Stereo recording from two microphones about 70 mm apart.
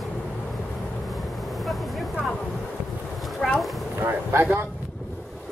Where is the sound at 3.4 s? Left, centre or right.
Centre.